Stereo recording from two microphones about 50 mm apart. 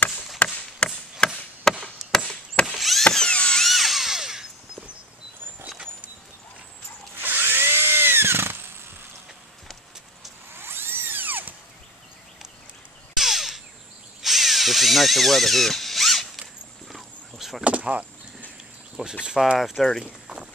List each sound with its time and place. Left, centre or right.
0.4 s chop: left; by 2.3 s centre
2.6 s a sound: centre
3.1 s a sound: centre
3.5 s drill: centre
7.2 s drill: right
10.5 s drill: right
13.2 s a sound: centre
14.2 s drill: centre
16.9 s horse: centre
17.6 s door: right
19.2 s speech: centre
19.6 s speech: centre